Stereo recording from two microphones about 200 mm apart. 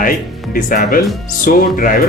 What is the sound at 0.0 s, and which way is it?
Speech, 45° left (ahead or behind).